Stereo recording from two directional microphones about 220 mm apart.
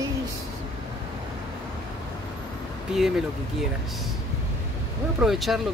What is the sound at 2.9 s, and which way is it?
Speech, centre (ahead or behind).